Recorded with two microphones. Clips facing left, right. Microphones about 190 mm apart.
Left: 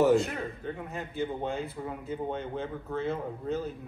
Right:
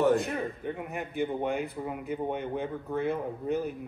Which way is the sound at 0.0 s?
Centre (ahead or behind).